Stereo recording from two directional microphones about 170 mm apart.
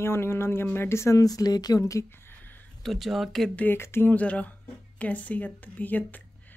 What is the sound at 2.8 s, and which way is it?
Speech, centre (ahead or behind).